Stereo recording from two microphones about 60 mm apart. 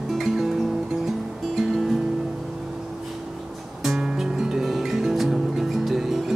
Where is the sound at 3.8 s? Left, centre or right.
Centre.